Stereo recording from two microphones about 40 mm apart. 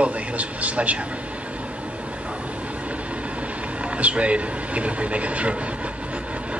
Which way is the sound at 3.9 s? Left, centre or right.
Right.